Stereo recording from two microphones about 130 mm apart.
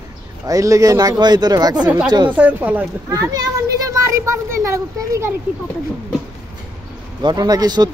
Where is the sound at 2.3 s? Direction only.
10° right (ahead or behind).